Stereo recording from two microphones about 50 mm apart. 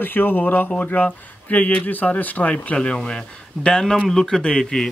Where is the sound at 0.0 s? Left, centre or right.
Left.